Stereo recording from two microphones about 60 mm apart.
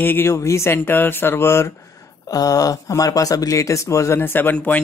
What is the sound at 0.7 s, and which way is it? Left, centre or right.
Speech, left.